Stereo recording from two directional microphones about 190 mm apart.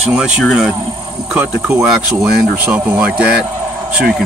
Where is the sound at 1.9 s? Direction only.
5° right (ahead or behind).